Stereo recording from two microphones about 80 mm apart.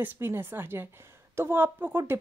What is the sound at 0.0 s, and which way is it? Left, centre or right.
Speech, right.